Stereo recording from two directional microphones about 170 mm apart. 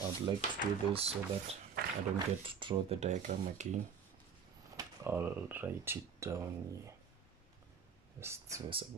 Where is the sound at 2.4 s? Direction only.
30° right (ahead or behind).